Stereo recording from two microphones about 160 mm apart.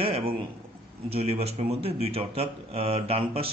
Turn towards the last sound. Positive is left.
turn(degrees=-35)  # may be behind; listen again after turning